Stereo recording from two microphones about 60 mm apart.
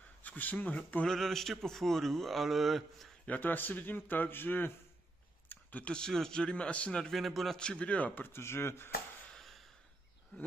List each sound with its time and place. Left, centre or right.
0.2 s speech: left
1.0 s a man's voice: centre
3.3 s a man's voice: left
5.5 s a sound: left
5.9 s a man's voice: centre
7.1 s a man's voice: centre
7.5 s a man's voice: centre
8.3 s speech: left